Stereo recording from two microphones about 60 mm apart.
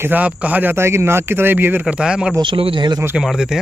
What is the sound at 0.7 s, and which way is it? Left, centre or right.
Speech, right.